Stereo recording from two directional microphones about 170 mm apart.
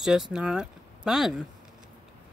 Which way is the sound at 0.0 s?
5° right (ahead or behind).